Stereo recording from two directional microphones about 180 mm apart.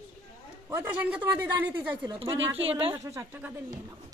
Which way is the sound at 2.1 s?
30° right (ahead or behind).